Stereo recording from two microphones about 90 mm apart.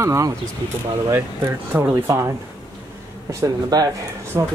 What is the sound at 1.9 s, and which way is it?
Speech, 35° right (ahead or behind).